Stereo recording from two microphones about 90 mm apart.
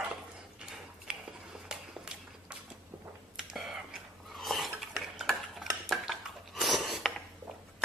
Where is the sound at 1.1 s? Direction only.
10° right (ahead or behind).